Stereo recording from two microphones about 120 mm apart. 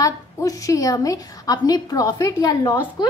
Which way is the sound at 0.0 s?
30° left (ahead or behind).